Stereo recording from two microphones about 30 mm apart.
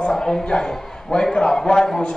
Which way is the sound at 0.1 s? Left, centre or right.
Left.